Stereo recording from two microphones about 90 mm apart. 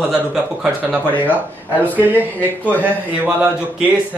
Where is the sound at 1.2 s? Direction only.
20° right (ahead or behind).